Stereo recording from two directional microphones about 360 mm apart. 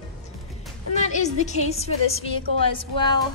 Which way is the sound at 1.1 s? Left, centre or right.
Centre.